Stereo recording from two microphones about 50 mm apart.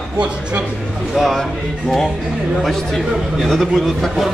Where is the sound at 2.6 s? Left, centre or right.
Centre.